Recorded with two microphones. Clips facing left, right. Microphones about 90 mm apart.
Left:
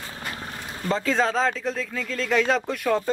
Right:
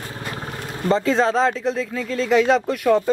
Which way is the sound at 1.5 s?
20° right (ahead or behind).